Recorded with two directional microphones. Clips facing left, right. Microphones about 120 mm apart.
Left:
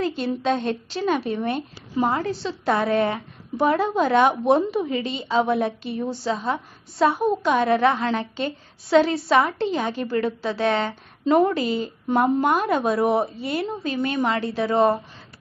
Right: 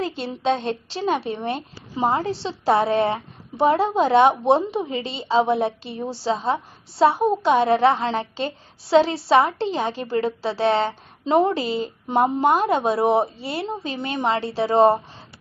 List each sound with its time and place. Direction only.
0.0 s a woman's voice: 30° right (ahead or behind)